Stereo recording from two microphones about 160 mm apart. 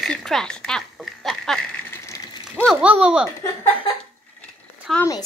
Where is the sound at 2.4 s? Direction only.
5° right (ahead or behind).